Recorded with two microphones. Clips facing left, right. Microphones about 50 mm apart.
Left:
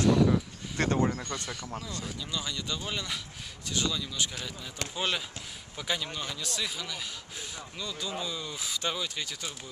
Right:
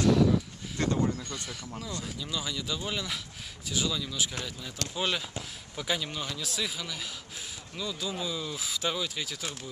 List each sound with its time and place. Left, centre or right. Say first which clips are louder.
0.0 s a sound: even; centre
0.7 s speech: left 1 dB; left
2.3 s speech: right 1 dB; centre